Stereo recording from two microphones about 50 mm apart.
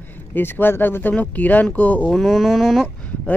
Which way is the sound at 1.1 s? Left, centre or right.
Left.